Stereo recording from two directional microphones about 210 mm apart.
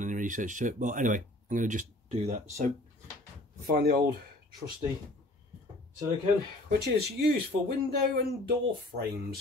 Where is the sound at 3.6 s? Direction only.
45° right (ahead or behind).